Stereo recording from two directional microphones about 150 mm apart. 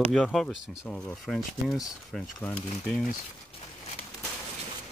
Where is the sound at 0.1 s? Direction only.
5° left (ahead or behind).